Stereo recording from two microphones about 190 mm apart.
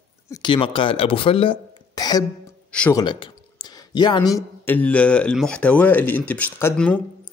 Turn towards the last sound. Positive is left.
turn(degrees=5)  # may be behind; listen again after turning